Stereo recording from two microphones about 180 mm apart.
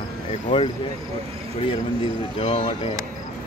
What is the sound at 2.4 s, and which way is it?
Speech, 30° left (ahead or behind).